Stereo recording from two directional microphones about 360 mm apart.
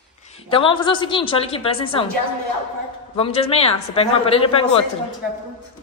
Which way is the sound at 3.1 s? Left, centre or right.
Centre.